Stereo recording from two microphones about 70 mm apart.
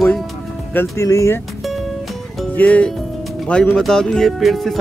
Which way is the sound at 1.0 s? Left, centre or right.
Left.